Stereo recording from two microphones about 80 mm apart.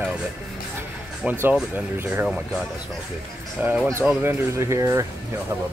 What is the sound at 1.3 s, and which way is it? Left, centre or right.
Speech, centre.